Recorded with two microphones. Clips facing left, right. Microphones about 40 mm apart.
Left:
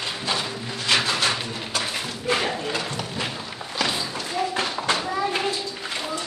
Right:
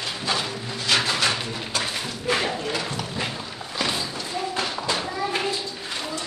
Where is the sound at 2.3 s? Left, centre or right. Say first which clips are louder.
Even; centre.